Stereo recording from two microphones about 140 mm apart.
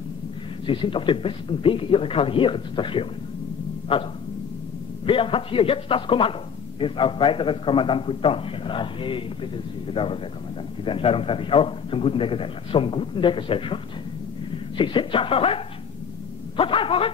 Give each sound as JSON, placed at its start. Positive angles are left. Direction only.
{"t": 0.7, "sound": "a man's voice", "side_deg": 40}
{"t": 14.8, "sound": "a man's voice", "side_deg": 35}